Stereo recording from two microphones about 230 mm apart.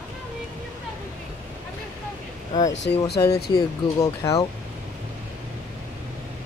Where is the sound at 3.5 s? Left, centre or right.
Centre.